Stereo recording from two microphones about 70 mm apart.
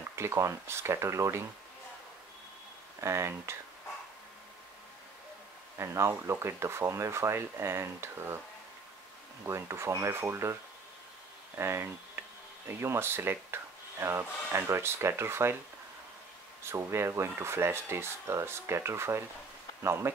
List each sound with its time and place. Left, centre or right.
0.1 s speech: right
3.0 s speech: right
5.8 s speech: right
9.4 s speech: right
16.7 s speech: right